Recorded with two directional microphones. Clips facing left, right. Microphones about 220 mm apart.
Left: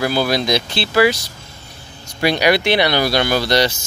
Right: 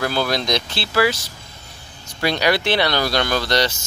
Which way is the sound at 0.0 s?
10° left (ahead or behind).